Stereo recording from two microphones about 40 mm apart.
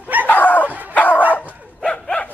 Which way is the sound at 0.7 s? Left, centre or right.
Right.